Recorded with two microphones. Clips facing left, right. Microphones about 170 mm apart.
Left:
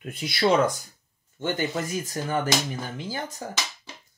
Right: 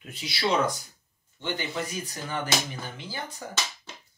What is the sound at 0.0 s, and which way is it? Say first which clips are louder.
Speech: left 6 dB; 50° left (ahead or behind).